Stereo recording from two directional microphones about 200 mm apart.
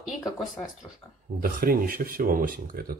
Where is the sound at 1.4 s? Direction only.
45° right (ahead or behind).